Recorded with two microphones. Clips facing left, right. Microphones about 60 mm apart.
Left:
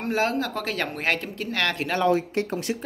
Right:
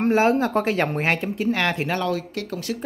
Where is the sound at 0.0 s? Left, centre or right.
Right.